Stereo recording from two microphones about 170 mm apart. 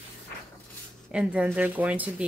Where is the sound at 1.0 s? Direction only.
5° right (ahead or behind).